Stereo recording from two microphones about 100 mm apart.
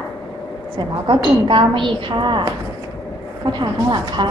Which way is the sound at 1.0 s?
55° right (ahead or behind).